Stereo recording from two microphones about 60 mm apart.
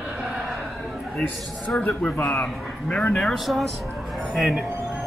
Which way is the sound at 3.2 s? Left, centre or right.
Centre.